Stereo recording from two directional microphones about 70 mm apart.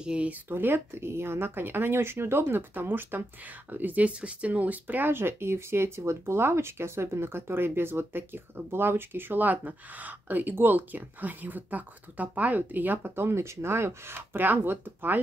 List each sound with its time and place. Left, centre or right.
0.0 s speech: centre
0.5 s speech: right